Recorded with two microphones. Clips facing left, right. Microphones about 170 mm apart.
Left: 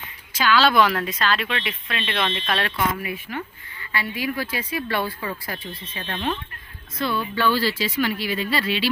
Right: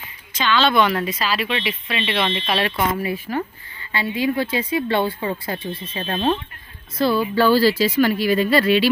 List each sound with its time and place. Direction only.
0.3 s speech: 5° left (ahead or behind)
2.7 s speech: 30° right (ahead or behind)
3.9 s speech: 25° right (ahead or behind); by 8.9 s 45° right (ahead or behind)